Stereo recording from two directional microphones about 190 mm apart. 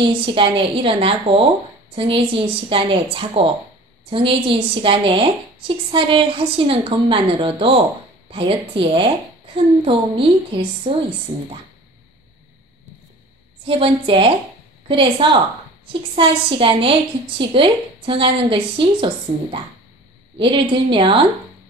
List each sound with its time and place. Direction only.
0.1 s a woman's voice: 25° right (ahead or behind)
13.7 s a woman's voice: 30° right (ahead or behind)